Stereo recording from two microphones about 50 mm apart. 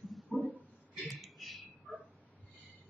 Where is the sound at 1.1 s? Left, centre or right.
Centre.